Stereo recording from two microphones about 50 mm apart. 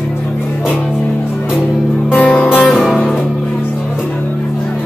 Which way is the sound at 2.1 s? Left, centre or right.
Left.